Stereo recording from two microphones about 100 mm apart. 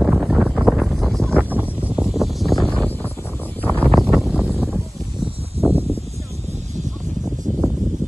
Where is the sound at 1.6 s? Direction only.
20° left (ahead or behind).